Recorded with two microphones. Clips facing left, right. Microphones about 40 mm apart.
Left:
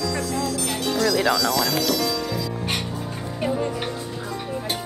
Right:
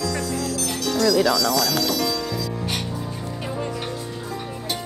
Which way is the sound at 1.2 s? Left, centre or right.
Left.